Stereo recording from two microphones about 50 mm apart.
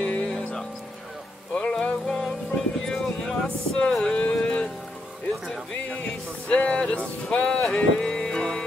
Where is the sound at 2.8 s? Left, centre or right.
Centre.